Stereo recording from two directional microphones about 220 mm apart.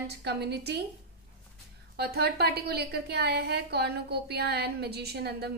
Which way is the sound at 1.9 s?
45° right (ahead or behind).